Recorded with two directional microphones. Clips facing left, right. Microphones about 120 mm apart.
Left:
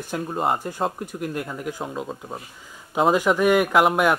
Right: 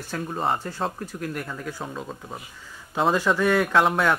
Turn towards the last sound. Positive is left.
turn(degrees=10)  # may be behind; listen again after turning